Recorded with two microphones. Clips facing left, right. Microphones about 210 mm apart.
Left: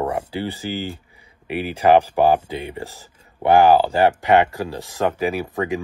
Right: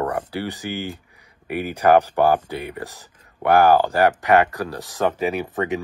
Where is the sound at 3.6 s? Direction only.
10° left (ahead or behind).